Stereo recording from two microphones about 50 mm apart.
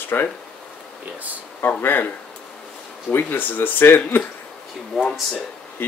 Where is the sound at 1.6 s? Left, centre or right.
Left.